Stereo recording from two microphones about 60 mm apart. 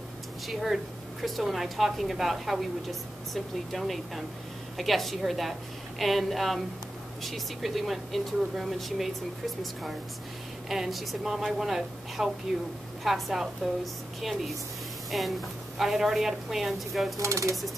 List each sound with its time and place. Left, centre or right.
0.5 s a woman's voice: centre
10.7 s a woman's voice: centre
17.2 s chopping: right